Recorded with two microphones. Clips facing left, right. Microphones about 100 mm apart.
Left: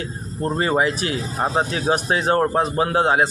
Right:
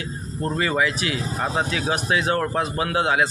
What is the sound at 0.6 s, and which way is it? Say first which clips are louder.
Speech: left 3 dB; 35° left (ahead or behind).